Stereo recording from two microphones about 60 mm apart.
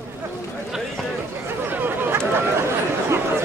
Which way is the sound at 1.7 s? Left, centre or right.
Right.